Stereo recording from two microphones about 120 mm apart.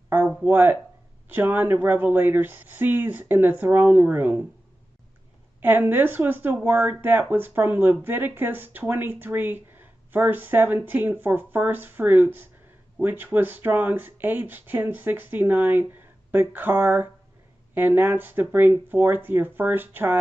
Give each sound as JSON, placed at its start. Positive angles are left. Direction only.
{"t": 0.1, "sound": "a sound", "side_deg": -15}
{"t": 1.3, "sound": "speech", "side_deg": -15}
{"t": 5.6, "sound": "speech", "side_deg": -15}